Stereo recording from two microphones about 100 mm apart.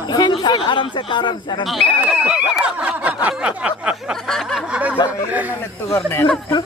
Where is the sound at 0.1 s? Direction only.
45° left (ahead or behind).